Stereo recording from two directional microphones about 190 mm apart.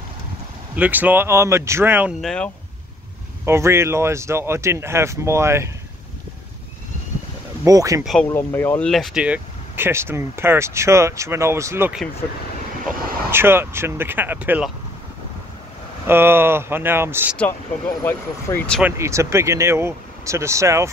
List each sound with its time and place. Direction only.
0.7 s speech: 10° right (ahead or behind)
2.2 s speech: 5° left (ahead or behind)
3.4 s speech: 15° right (ahead or behind)
7.6 s speech: 20° right (ahead or behind)
8.0 s speech: centre (ahead or behind)
8.3 s speech: 15° left (ahead or behind); by 12.0 s 10° right (ahead or behind)
13.3 s speech: 10° right (ahead or behind)
16.1 s speech: 10° right (ahead or behind)
18.0 s speech: 10° left (ahead or behind)
18.8 s speech: 10° right (ahead or behind)